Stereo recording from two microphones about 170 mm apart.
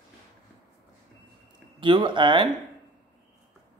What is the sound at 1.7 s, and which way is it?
Speech, 30° right (ahead or behind).